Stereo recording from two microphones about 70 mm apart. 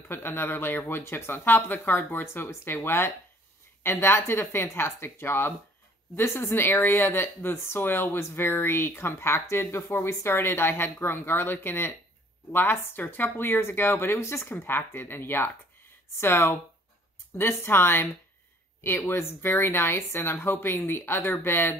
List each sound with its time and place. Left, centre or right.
0.1 s speech: left